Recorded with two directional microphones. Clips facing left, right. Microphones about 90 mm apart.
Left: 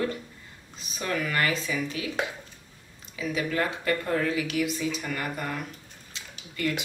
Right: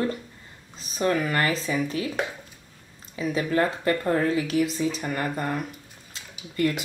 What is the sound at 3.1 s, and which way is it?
Speech, 35° right (ahead or behind).